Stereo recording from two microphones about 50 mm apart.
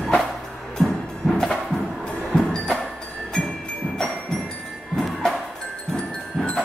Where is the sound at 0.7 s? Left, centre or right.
Centre.